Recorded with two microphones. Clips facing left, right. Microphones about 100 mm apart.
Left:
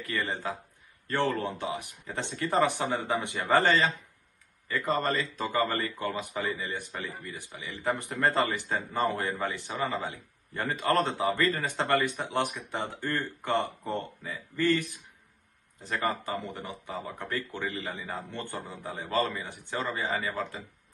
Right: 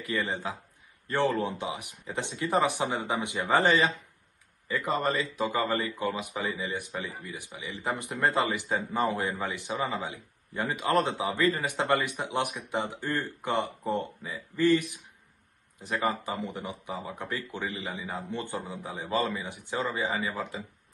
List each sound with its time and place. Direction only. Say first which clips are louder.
0.0 s a man's voice: right 1 dB; 15° right (ahead or behind)